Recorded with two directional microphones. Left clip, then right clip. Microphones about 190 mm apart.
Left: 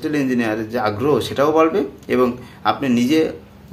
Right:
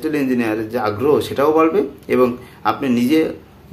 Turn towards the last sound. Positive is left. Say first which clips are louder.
# right 1 dB
turn(degrees=-5)  # may be behind; listen again after turning